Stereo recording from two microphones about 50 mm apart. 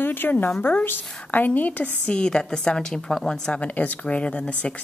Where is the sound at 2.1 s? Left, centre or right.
Centre.